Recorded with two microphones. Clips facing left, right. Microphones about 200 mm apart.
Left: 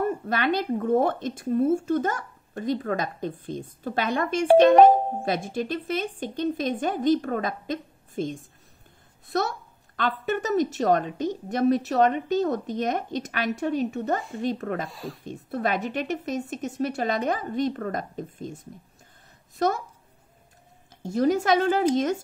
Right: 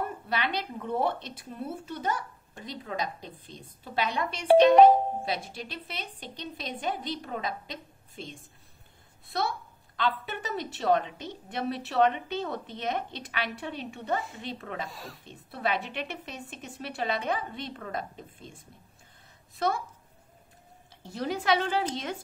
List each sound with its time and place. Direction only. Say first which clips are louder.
0.3 s speech: left 5 dB; 45° left (ahead or behind)
14.9 s speech: left 7 dB; centre (ahead or behind)
15.2 s a woman's voice: left 4 dB; 45° left (ahead or behind)
21.0 s speech: left 10 dB; 45° left (ahead or behind)